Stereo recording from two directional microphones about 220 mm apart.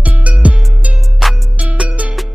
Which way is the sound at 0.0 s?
5° right (ahead or behind).